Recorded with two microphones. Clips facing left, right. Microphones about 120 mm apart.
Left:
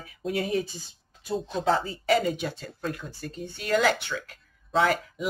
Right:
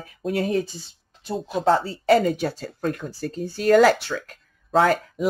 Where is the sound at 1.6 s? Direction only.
45° right (ahead or behind).